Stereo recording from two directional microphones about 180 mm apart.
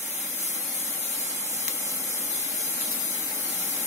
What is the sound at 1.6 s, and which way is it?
Spray, 15° right (ahead or behind).